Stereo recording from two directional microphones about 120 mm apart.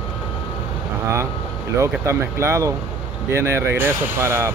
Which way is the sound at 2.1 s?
25° right (ahead or behind).